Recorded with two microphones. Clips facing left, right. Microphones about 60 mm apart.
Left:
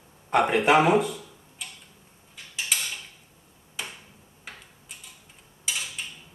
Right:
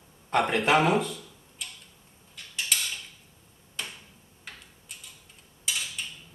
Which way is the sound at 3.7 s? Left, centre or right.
Centre.